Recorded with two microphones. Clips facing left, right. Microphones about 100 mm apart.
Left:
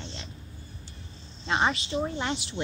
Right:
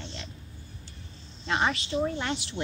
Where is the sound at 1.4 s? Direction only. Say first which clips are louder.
Left 1 dB; 20° left (ahead or behind).